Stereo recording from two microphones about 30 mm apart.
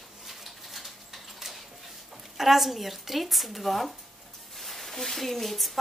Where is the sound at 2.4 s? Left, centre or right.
Centre.